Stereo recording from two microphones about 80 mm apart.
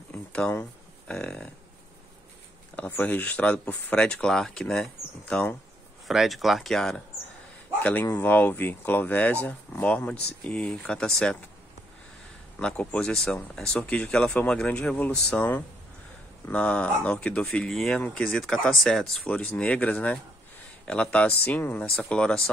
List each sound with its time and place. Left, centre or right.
0.1 s a sound: centre
1.0 s speech: centre
2.9 s speech: left
6.0 s speech: centre
7.8 s speech: left; by 11.3 s centre
12.5 s speech: centre
13.7 s speech: centre
16.4 s speech: centre
17.6 s speech: centre
19.3 s speech: centre